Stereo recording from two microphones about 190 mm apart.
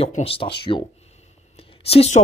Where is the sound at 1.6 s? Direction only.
30° left (ahead or behind).